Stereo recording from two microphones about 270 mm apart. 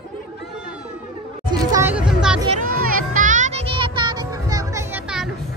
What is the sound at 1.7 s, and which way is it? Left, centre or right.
Music, centre.